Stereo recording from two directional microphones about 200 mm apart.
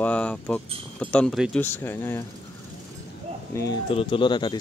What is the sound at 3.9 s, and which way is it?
Speech, 25° left (ahead or behind).